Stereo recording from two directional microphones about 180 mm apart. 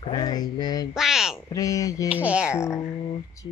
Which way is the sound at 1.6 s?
20° left (ahead or behind).